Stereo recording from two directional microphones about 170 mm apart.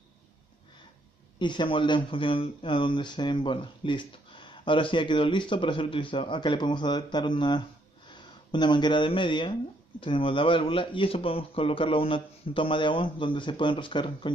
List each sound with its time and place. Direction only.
1.4 s speech: 30° left (ahead or behind)